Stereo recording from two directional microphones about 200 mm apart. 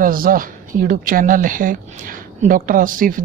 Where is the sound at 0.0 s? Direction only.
45° right (ahead or behind).